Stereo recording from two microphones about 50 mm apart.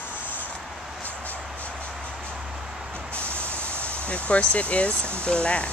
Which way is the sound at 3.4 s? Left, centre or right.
Right.